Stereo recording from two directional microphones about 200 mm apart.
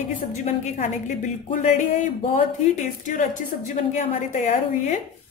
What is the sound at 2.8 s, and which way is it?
A woman's voice, 40° left (ahead or behind).